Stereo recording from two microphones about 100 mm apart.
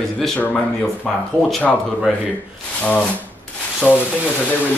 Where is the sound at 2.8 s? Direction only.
15° left (ahead or behind).